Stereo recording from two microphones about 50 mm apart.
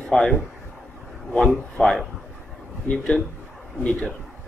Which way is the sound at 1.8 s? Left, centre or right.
Centre.